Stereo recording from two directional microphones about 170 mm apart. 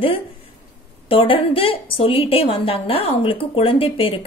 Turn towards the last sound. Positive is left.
turn(degrees=35)  # may be behind; listen again after turning